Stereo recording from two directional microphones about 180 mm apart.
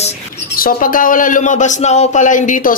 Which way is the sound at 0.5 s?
50° left (ahead or behind).